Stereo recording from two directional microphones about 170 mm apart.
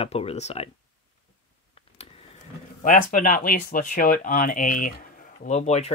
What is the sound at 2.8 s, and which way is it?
Speech, 50° left (ahead or behind).